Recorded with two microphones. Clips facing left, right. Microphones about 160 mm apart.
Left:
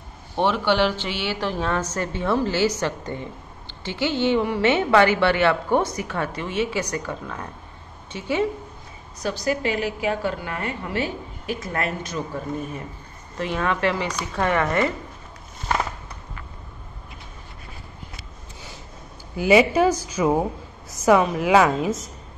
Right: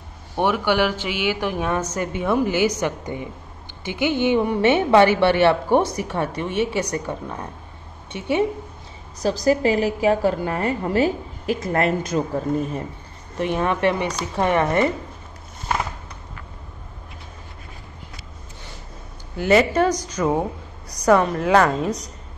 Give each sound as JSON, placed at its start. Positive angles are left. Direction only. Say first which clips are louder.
{"t": 0.4, "sound": "a woman's voice", "louder": "right 1 dB", "side_deg": -10}
{"t": 9.2, "sound": "a woman's voice", "louder": "right 6 dB", "side_deg": -35}
{"t": 13.4, "sound": "a woman's voice", "louder": "right 3 dB", "side_deg": -20}
{"t": 19.3, "sound": "a woman's voice", "louder": "even", "side_deg": 10}